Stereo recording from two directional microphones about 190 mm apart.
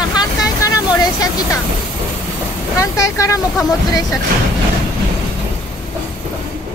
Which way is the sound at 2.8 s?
15° left (ahead or behind).